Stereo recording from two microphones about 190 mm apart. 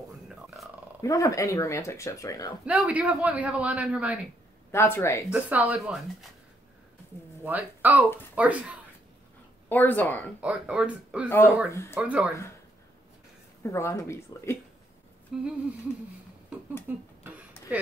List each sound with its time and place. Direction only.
0.6 s roar: centre (ahead or behind)
1.0 s speech: 15° left (ahead or behind)
2.6 s speech: 5° right (ahead or behind)
4.6 s speech: 10° left (ahead or behind)
5.3 s speech: 10° right (ahead or behind)
7.4 s speech: 10° right (ahead or behind)
9.7 s speech: 10° left (ahead or behind)
10.4 s speech: 5° right (ahead or behind)
11.2 s speech: 10° left (ahead or behind)
11.9 s speech: 5° right (ahead or behind)
13.6 s speech: 15° left (ahead or behind)
15.3 s a sound: 5° right (ahead or behind)
16.9 s speech: 10° right (ahead or behind)
17.2 s a sound: 10° right (ahead or behind)